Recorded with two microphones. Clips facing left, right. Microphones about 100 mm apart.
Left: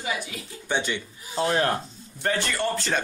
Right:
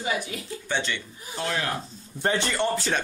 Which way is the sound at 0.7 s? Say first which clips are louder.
Left 2 dB; 15° left (ahead or behind).